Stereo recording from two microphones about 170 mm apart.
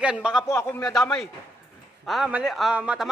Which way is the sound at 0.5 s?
15° left (ahead or behind).